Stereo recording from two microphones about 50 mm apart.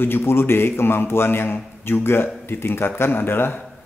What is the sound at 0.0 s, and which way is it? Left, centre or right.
A man's voice, left.